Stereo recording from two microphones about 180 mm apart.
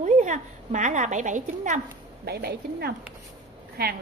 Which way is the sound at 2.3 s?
60° right (ahead or behind).